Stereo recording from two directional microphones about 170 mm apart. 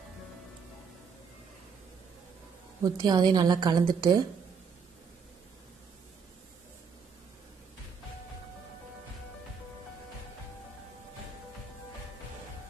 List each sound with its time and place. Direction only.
2.8 s a woman's voice: 25° right (ahead or behind)